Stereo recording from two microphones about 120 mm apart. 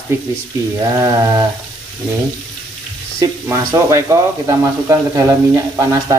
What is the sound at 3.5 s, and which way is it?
Speech, 25° right (ahead or behind).